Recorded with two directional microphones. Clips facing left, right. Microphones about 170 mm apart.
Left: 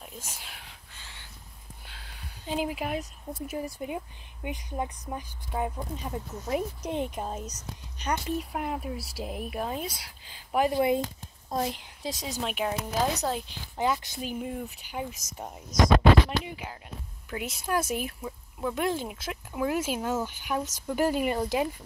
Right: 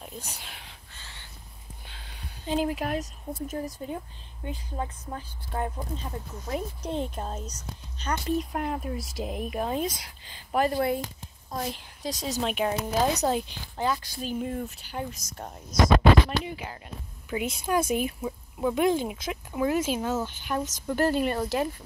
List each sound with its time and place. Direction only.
0.0 s a sound: 5° left (ahead or behind)
1.9 s a woman's voice: 5° left (ahead or behind); by 12.2 s 20° left (ahead or behind)
12.3 s speech: 5° left (ahead or behind)
13.7 s a woman's voice: 20° left (ahead or behind)
14.4 s speech: 5° left (ahead or behind)
18.2 s speech: 10° right (ahead or behind)
18.9 s speech: centre (ahead or behind)